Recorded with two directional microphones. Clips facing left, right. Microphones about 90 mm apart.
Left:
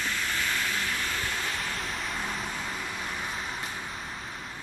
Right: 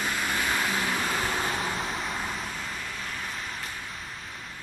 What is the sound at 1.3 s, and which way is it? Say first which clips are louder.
Vehicle: right 4 dB; 35° right (ahead or behind).